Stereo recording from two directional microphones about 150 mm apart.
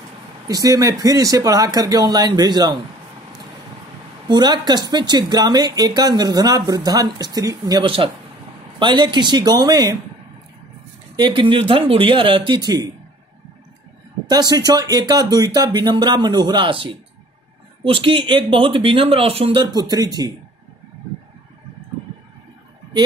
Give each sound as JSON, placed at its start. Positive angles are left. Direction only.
{"t": 0.5, "sound": "speech", "side_deg": -25}
{"t": 4.3, "sound": "speech", "side_deg": -30}
{"t": 11.1, "sound": "speech", "side_deg": -30}
{"t": 14.3, "sound": "speech", "side_deg": -25}